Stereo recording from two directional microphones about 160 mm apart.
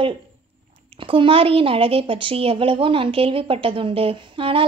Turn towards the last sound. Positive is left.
turn(degrees=-35)  # may be behind; listen again after turning